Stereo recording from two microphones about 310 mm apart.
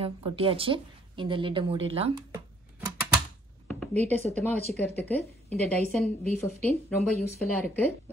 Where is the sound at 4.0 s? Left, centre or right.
Right.